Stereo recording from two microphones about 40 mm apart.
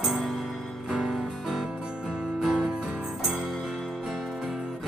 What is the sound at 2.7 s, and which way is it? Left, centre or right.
Music, right.